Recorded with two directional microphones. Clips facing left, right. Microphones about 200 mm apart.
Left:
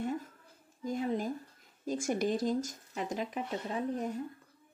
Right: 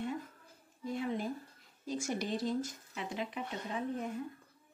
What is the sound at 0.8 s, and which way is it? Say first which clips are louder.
A woman's voice: left 3 dB; 40° left (ahead or behind).